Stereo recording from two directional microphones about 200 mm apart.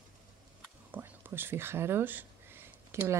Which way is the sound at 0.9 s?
10° right (ahead or behind).